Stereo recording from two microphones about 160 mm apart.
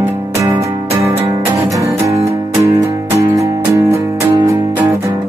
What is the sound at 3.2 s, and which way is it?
Music, 20° right (ahead or behind).